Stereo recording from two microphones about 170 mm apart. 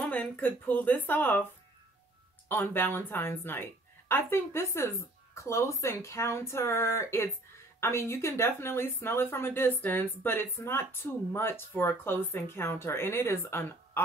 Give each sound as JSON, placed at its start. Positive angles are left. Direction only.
{"t": 0.1, "sound": "speech", "side_deg": 10}
{"t": 2.4, "sound": "speech", "side_deg": 15}